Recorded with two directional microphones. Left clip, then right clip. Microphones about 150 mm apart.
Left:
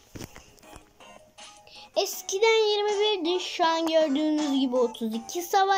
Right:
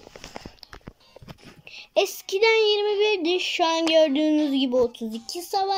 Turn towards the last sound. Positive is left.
turn(degrees=-15)  # may be behind; listen again after turning